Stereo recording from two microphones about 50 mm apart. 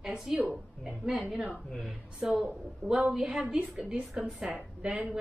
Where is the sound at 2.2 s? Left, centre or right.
Centre.